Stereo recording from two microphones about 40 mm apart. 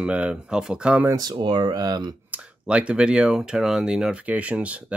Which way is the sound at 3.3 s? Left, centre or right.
Centre.